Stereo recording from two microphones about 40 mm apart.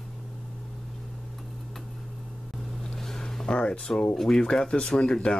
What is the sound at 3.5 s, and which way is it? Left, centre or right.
Speech, left.